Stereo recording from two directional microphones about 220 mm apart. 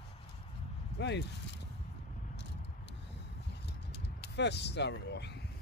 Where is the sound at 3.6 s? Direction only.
50° left (ahead or behind).